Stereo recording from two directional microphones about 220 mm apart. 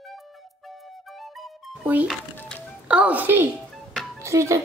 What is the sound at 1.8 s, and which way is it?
Speech, 5° right (ahead or behind).